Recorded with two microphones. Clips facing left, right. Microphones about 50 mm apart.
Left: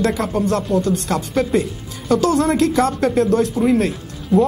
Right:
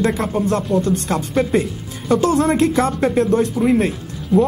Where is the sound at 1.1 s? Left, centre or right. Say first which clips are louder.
Even; centre.